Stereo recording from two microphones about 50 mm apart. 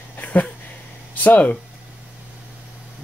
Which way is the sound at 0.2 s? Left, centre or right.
Left.